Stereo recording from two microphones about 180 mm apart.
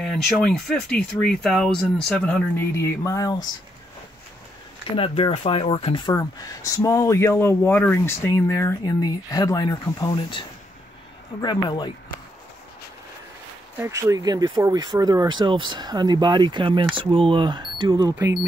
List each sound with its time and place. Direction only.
0.0 s speech: 5° left (ahead or behind); by 3.4 s 20° left (ahead or behind)
4.9 s speech: 30° left (ahead or behind)
11.4 s speech: 25° left (ahead or behind)
13.7 s speech: 15° right (ahead or behind)